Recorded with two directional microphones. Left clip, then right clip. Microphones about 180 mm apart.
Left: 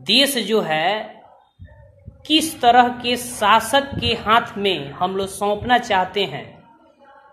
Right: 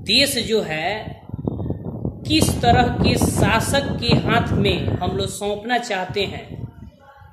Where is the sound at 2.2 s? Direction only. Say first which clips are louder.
Left 2 dB; 5° right (ahead or behind).